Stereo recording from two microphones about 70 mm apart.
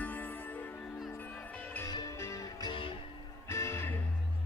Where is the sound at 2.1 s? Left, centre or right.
Left.